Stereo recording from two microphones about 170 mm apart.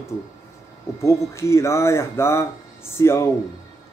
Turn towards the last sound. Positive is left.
turn(degrees=15)  # may be behind; listen again after turning